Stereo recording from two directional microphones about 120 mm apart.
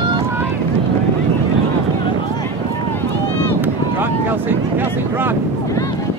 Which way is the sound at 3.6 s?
15° right (ahead or behind).